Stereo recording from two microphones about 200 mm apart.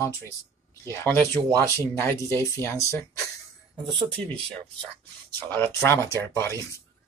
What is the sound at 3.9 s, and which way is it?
Speech, 25° right (ahead or behind).